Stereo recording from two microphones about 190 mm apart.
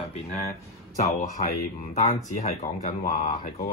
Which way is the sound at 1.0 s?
50° left (ahead or behind).